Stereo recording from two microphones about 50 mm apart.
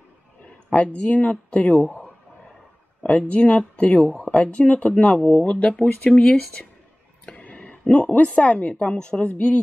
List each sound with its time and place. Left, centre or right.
0.7 s speech: left
3.4 s speech: centre
7.3 s a sound: left
8.2 s speech: left